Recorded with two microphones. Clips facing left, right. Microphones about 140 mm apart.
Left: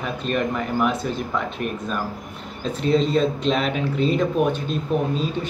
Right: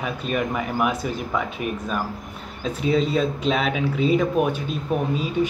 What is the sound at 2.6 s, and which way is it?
Speech, 5° right (ahead or behind).